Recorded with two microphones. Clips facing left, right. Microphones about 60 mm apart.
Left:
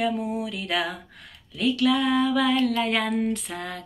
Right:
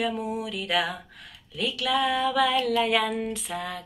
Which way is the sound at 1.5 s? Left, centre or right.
Left.